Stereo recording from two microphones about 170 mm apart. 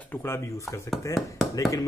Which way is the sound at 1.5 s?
20° left (ahead or behind).